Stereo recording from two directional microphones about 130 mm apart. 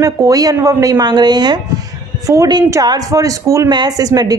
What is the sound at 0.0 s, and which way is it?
Speech, 30° right (ahead or behind).